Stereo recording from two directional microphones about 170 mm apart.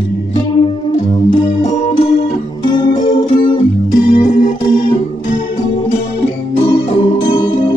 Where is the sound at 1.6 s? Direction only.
45° left (ahead or behind); by 4.3 s 30° left (ahead or behind).